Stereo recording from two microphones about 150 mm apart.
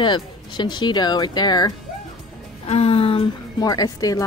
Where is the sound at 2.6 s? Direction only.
40° left (ahead or behind).